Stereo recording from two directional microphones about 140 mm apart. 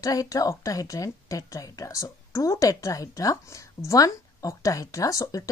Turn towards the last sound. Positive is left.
turn(degrees=25)  # may be behind; listen again after turning